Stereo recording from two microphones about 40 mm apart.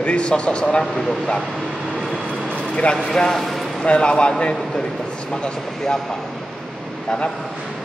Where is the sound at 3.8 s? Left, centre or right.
Left.